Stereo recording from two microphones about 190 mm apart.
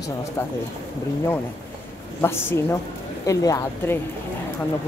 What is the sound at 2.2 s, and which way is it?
Speech, 15° left (ahead or behind).